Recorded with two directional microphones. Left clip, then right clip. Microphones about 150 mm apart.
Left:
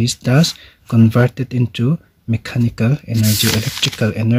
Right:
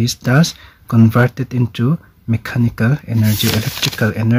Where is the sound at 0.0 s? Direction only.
30° left (ahead or behind).